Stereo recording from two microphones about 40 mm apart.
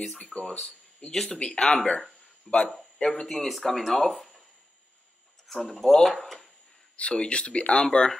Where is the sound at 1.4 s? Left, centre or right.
Left.